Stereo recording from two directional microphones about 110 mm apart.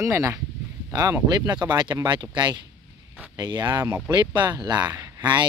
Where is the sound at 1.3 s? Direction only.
40° right (ahead or behind).